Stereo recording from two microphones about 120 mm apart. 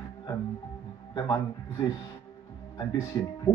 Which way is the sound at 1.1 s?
25° left (ahead or behind).